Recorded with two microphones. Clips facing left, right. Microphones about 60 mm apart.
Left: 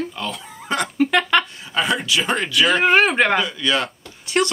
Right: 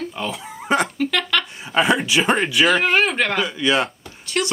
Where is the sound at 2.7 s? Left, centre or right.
Centre.